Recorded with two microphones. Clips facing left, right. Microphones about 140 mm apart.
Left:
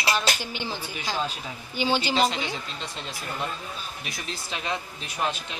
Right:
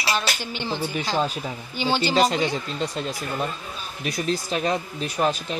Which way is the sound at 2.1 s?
40° right (ahead or behind).